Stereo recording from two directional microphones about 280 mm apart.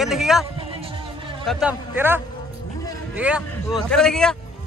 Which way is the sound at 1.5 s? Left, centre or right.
Centre.